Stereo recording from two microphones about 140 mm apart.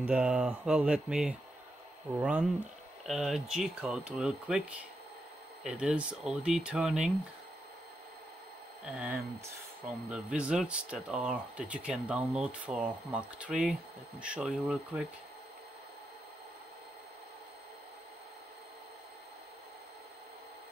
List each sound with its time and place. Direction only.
0.0 s speech: 5° right (ahead or behind)
8.8 s speech: 5° right (ahead or behind)